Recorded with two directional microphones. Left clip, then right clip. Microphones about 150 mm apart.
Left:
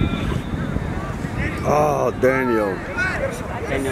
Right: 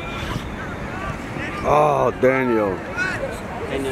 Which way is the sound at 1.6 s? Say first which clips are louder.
Right 2 dB; 20° right (ahead or behind).